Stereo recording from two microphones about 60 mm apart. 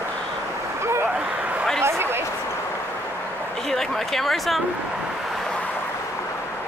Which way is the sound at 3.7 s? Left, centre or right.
Centre.